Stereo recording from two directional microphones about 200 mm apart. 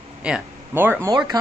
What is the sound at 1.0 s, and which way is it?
Speech, 20° right (ahead or behind).